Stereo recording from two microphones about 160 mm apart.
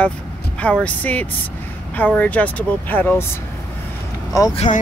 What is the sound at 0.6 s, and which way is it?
Speech, 10° left (ahead or behind).